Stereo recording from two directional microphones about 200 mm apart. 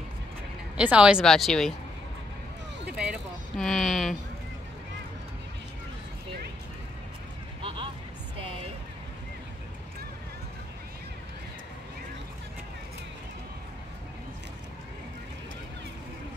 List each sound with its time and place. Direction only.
0.7 s speech: 5° right (ahead or behind)
3.0 s speech: centre (ahead or behind)
7.6 s a sound: 25° right (ahead or behind)